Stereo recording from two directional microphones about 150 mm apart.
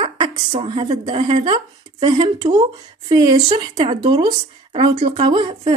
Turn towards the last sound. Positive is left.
turn(degrees=-35)  # may be behind; listen again after turning